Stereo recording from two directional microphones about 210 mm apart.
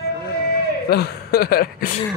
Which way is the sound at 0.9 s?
50° left (ahead or behind).